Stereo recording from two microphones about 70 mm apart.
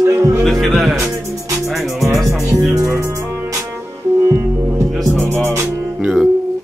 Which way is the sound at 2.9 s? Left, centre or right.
Right.